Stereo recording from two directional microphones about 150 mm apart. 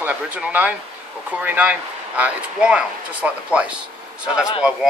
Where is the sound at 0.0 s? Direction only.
10° right (ahead or behind).